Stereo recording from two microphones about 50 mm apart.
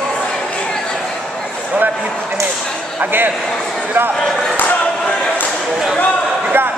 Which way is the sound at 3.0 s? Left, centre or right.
Right.